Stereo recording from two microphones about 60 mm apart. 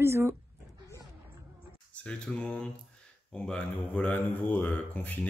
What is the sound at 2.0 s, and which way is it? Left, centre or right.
Speech, centre.